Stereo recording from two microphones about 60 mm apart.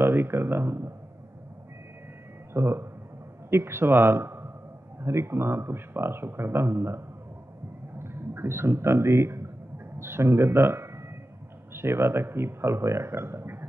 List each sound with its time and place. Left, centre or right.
0.0 s speech: right
2.5 s speech: right
8.0 s a man's voice: right